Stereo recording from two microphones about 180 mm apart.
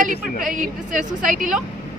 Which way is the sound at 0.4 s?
45° right (ahead or behind).